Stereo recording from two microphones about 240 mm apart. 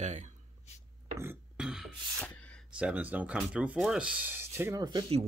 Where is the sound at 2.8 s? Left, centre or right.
Centre.